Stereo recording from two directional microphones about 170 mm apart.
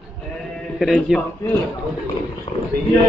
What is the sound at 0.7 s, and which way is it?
Speech, 5° right (ahead or behind).